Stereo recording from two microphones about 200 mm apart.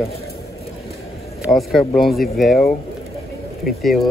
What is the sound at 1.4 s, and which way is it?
Speech, centre (ahead or behind).